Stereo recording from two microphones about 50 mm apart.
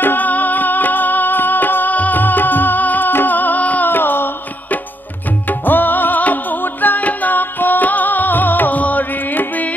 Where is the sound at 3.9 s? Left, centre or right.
Left.